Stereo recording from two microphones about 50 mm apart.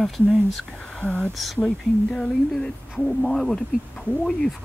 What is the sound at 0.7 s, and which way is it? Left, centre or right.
Speech, centre.